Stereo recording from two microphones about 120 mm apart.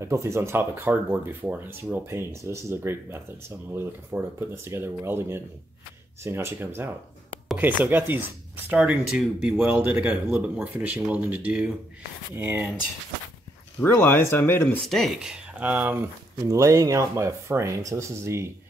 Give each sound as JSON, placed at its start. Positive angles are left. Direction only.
{"t": 0.0, "sound": "speech", "side_deg": -25}
{"t": 13.7, "sound": "speech", "side_deg": 20}
{"t": 14.9, "sound": "speech", "side_deg": 0}